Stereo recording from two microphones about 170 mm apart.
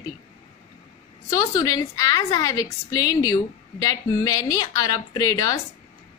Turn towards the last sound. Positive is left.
turn(degrees=20)  # may be behind; listen again after turning